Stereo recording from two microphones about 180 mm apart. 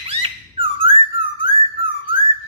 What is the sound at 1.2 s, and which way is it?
Whistling, 70° left (ahead or behind).